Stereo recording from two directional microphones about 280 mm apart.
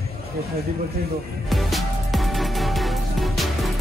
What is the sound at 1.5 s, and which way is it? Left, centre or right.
Music, centre.